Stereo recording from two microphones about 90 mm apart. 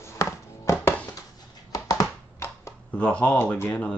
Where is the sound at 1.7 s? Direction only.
45° left (ahead or behind).